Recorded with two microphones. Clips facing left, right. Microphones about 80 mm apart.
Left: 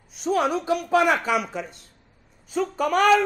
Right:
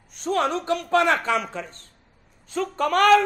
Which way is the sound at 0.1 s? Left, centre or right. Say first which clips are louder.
Left 1 dB; centre.